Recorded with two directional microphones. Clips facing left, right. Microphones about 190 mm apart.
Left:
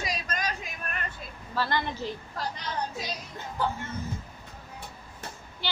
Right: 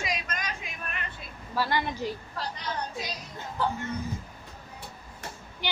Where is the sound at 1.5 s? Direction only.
10° right (ahead or behind).